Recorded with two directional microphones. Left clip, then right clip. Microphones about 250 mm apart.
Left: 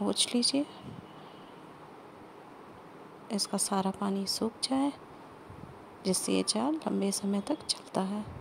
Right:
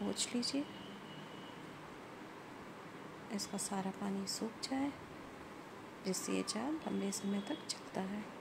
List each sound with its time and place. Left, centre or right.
0.0 s speech: left
3.3 s speech: left
6.0 s speech: left